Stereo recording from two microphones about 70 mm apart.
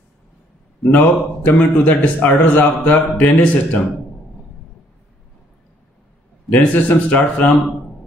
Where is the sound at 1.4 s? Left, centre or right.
Left.